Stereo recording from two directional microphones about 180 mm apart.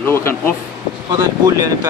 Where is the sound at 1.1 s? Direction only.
20° right (ahead or behind).